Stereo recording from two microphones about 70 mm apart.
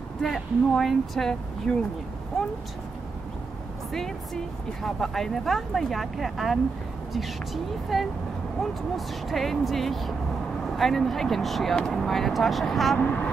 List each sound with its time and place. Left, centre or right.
0.2 s speech: centre
2.3 s a sound: centre
3.9 s speech: centre
13.0 s speech: centre